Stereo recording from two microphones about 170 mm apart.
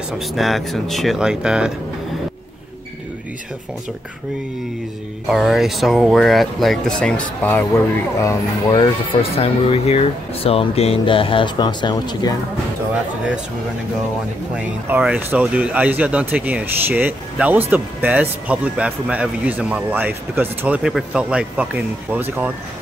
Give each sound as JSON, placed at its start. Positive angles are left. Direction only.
{"t": 0.3, "sound": "speech", "side_deg": 0}
{"t": 5.3, "sound": "speech", "side_deg": 0}
{"t": 9.4, "sound": "speech", "side_deg": 35}
{"t": 14.5, "sound": "speech", "side_deg": -5}